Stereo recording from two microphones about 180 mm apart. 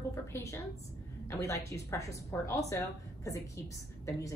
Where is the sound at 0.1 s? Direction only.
15° left (ahead or behind).